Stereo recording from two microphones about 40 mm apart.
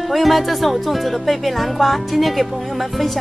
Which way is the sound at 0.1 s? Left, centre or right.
Centre.